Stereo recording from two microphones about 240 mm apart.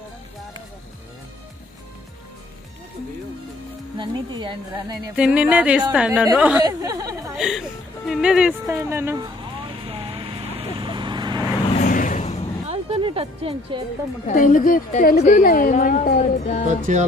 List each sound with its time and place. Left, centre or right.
4.0 s a woman's voice: centre
5.1 s speech: centre
6.6 s speech: centre
7.3 s speech: centre
8.1 s vehicle: centre
11.7 s vehicle: left
12.6 s music: right
14.2 s a woman's voice: left
16.6 s music: right